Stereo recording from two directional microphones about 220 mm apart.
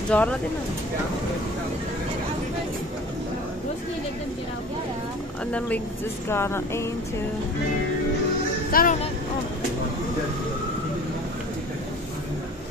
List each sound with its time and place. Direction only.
0.1 s speech: 5° left (ahead or behind)
6.2 s a sound: 10° left (ahead or behind)
8.7 s speech: 40° left (ahead or behind)